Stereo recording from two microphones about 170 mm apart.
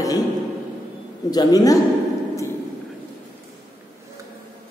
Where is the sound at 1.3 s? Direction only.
20° left (ahead or behind).